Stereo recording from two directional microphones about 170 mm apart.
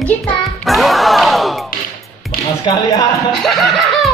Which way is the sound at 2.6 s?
20° left (ahead or behind).